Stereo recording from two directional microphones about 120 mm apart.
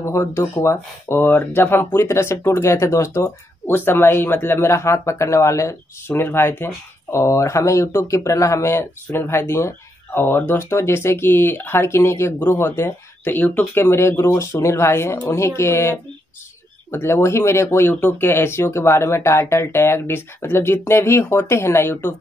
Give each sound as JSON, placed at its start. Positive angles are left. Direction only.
{"t": 0.0, "sound": "speech", "side_deg": 20}